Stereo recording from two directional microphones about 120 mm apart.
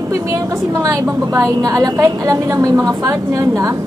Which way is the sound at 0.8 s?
25° right (ahead or behind).